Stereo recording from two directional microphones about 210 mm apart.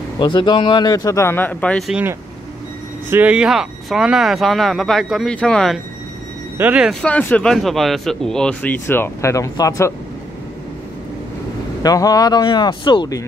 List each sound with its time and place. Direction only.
0.2 s speech: 20° left (ahead or behind)
11.8 s speech: 15° left (ahead or behind)